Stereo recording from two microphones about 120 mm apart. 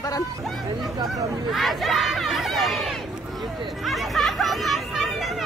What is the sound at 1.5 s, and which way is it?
Speech, centre (ahead or behind).